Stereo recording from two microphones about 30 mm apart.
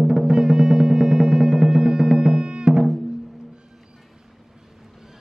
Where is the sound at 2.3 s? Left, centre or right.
Right.